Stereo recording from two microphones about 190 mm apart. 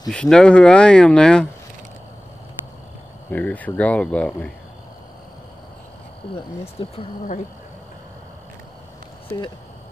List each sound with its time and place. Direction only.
0.1 s speech: 5° left (ahead or behind)
3.3 s speech: 5° left (ahead or behind)
6.8 s speech: 30° left (ahead or behind)